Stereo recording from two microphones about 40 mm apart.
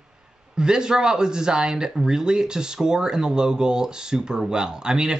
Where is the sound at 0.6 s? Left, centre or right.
Centre.